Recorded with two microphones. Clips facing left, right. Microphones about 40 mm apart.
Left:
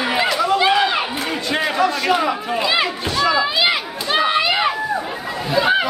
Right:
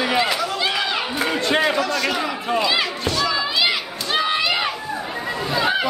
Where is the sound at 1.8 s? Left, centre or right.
Centre.